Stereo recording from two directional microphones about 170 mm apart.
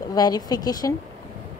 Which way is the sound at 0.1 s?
25° left (ahead or behind).